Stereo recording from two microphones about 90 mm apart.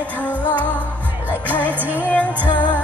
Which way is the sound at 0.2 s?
15° left (ahead or behind).